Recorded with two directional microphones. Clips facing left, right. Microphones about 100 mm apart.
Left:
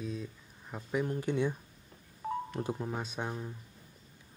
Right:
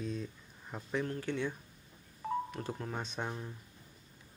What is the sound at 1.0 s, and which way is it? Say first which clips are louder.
Speech: left 4 dB; 15° left (ahead or behind).